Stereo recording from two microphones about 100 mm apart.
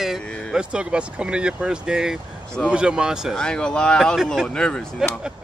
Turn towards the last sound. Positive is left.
turn(degrees=-5)  # may be behind; listen again after turning